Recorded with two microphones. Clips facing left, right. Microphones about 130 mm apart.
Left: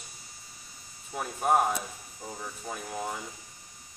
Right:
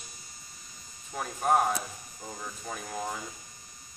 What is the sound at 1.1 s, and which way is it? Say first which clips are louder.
Speech: even; 5° left (ahead or behind).